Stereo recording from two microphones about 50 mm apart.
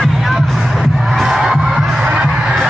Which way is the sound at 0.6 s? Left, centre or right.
Centre.